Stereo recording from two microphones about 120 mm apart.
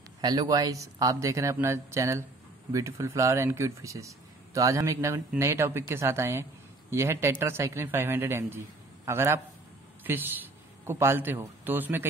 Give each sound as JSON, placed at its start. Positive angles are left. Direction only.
{"t": 0.2, "sound": "a man's voice", "side_deg": -30}